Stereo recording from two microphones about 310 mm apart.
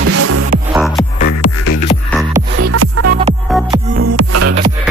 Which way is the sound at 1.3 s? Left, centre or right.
Left.